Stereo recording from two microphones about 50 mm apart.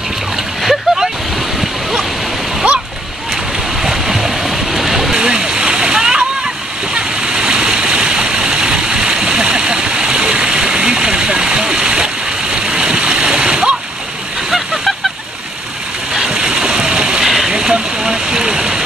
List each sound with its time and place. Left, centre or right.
0.6 s splash: centre
1.6 s waterfall: centre
3.5 s stream: centre
14.5 s goose: centre
16.3 s water: centre
17.2 s stream: centre